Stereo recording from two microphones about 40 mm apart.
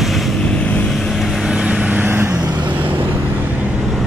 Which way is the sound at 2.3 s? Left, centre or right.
Right.